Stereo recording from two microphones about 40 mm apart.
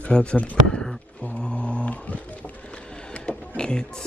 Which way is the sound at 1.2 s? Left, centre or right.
Left.